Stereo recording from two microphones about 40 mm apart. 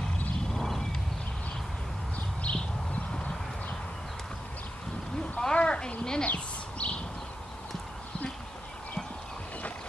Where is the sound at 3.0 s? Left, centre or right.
Left.